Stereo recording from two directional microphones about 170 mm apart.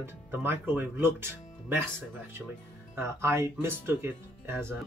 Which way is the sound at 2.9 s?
15° right (ahead or behind).